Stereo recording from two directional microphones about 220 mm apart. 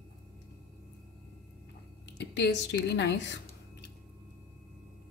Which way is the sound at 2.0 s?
55° left (ahead or behind).